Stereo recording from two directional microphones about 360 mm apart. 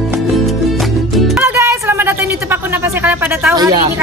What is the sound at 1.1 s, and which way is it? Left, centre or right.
Music, centre.